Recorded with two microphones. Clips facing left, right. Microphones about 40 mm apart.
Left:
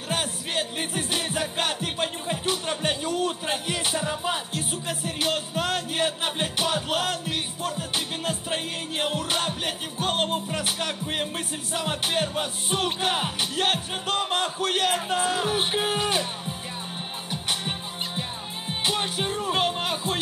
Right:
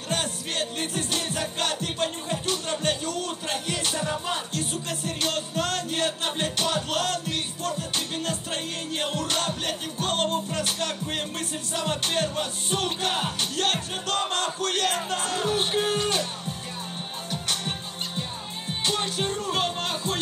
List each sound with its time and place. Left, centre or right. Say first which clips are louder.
0.1 s music: left 1 dB; centre